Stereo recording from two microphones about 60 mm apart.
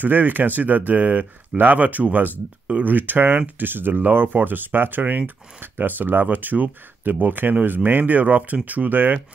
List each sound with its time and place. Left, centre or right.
0.0 s speech: right